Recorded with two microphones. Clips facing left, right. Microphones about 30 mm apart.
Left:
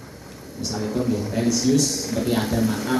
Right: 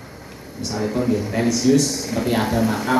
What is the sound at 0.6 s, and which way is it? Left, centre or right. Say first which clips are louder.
A man's voice: right 3 dB; centre.